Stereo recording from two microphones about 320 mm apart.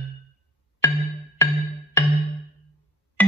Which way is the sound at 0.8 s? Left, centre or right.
Centre.